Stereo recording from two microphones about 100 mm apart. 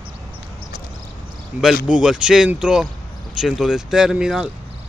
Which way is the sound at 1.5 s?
15° right (ahead or behind).